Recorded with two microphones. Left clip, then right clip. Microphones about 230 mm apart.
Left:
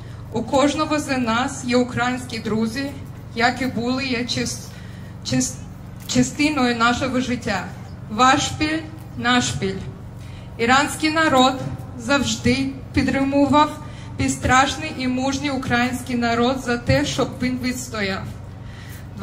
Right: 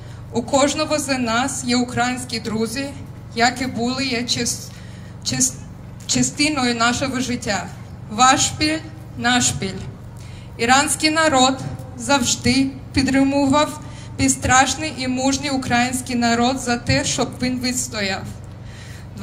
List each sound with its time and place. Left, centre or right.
0.3 s a woman's voice: right